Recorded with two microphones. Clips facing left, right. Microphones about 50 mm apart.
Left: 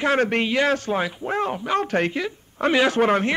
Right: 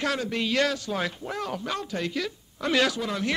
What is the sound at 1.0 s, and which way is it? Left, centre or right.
Speech, centre.